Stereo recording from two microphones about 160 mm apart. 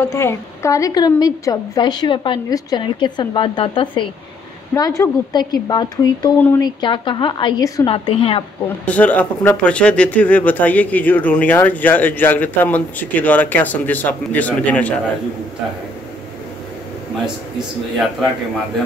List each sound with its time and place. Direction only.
0.1 s a woman's voice: 15° left (ahead or behind)
4.7 s a woman's voice: 20° left (ahead or behind)
7.9 s a woman's voice: 35° left (ahead or behind)
8.6 s speech: 10° left (ahead or behind)